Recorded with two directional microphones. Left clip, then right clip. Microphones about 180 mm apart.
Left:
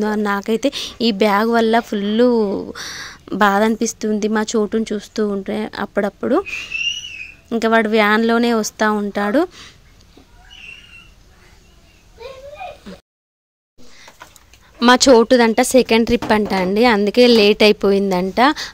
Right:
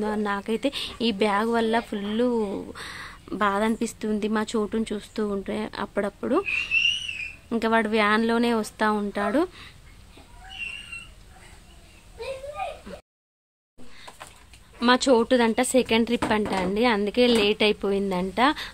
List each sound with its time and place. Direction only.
0.0 s speech: 35° left (ahead or behind)
7.4 s speech: 25° left (ahead or behind)
14.8 s speech: 40° left (ahead or behind)